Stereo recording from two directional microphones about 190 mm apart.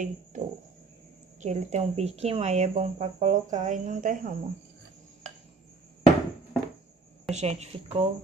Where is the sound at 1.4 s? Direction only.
35° right (ahead or behind).